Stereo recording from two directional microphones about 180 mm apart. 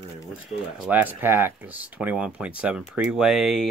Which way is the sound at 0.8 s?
10° right (ahead or behind).